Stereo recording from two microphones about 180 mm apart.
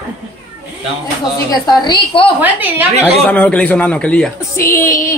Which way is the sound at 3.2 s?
10° left (ahead or behind).